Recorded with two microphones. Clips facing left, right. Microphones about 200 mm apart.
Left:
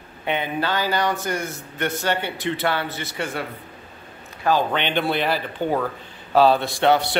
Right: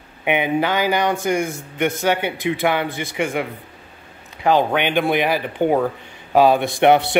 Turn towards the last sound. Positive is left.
turn(degrees=-20)  # may be behind; listen again after turning